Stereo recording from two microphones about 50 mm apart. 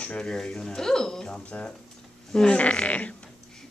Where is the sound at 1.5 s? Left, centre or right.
Left.